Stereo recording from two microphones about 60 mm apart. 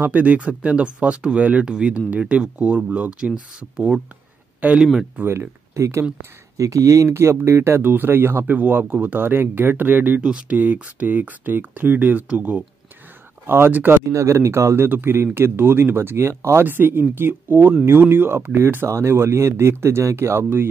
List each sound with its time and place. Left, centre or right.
0.0 s speech: right
4.6 s speech: right
5.8 s speech: right
6.5 s speech: right
7.2 s speech: right
7.8 s speech: right
10.2 s speech: centre
10.6 s speech: right
14.1 s speech: right
14.9 s speech: right
16.6 s speech: right
18.9 s speech: right